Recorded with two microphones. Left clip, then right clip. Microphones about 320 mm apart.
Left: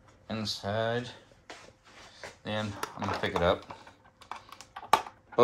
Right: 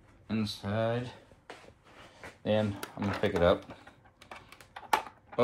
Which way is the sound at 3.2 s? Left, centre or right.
Centre.